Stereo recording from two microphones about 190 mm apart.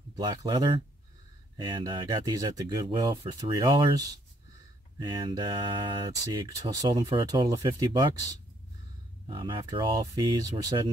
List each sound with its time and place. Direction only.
0.1 s speech: 20° right (ahead or behind)